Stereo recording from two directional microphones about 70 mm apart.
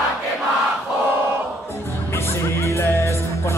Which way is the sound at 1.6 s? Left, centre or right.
Left.